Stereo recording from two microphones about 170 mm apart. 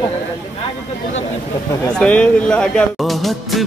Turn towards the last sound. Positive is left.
turn(degrees=0)  # may be behind; listen again after turning